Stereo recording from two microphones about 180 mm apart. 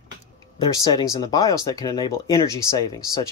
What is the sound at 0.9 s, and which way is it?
Speech, 20° left (ahead or behind).